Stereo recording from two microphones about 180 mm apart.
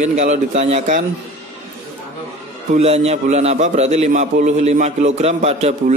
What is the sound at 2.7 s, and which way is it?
A man's voice, 35° right (ahead or behind).